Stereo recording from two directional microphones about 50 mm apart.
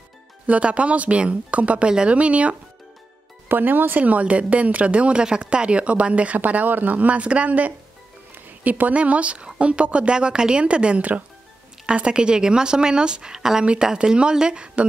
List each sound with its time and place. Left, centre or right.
0.5 s a woman's voice: right
3.4 s a woman's voice: right
11.8 s a woman's voice: centre